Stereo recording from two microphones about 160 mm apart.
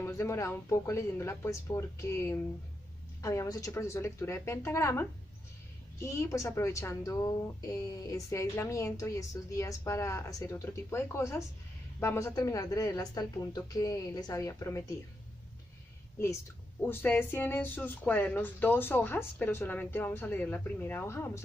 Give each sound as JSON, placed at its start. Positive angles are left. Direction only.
{"t": 0.0, "sound": "speech", "side_deg": 15}
{"t": 6.0, "sound": "a woman's voice", "side_deg": 20}
{"t": 16.8, "sound": "speech", "side_deg": 15}